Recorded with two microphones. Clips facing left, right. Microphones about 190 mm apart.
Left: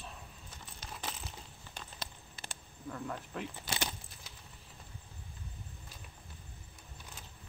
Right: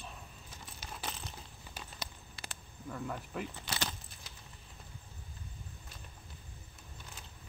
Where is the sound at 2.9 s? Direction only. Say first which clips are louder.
Right 1 dB; centre (ahead or behind).